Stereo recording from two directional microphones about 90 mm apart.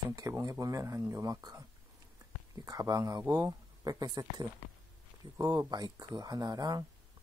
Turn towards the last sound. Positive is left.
turn(degrees=-45)  # may be behind; listen again after turning